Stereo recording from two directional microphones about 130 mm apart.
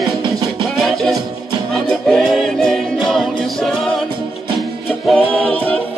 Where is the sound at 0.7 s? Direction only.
Centre (ahead or behind).